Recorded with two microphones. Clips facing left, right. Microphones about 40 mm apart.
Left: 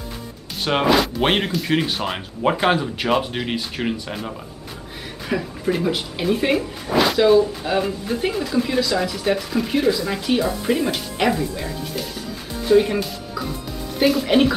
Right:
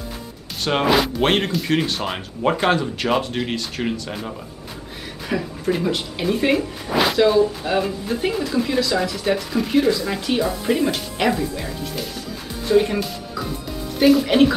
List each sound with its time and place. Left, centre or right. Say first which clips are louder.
0.7 s speech: even; centre
1.2 s speech: right 1 dB; centre